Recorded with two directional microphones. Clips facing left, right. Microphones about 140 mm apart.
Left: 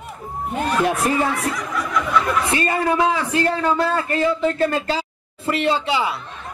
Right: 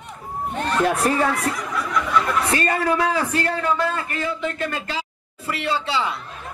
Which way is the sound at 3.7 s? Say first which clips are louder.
Left 4 dB; 35° left (ahead or behind).